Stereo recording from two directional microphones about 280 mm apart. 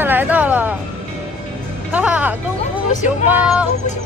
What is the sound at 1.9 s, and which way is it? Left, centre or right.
Speech, centre.